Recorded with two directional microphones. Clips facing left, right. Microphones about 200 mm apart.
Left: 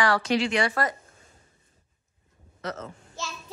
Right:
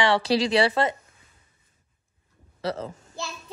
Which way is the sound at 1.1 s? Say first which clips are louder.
Left 5 dB; 45° left (ahead or behind).